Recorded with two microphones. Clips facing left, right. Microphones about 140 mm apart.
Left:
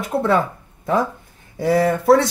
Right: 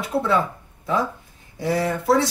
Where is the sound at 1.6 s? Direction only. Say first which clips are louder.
Left 6 dB; 55° left (ahead or behind).